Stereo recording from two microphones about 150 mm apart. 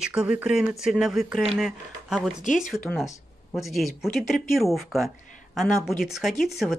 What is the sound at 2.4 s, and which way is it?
Speech, 55° left (ahead or behind).